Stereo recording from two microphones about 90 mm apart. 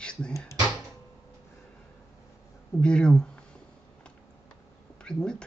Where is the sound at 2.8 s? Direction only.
10° left (ahead or behind).